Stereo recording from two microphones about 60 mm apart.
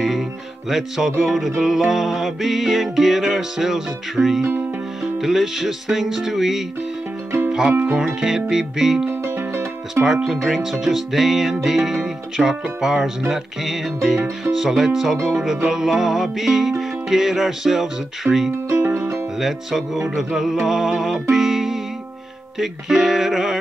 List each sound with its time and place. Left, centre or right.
0.0 s music: centre
8.0 s music: centre
9.0 s music: right
10.0 s music: centre
18.7 s music: right
19.4 s music: centre